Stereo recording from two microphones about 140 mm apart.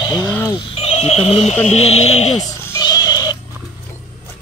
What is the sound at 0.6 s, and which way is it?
Speech, 45° left (ahead or behind).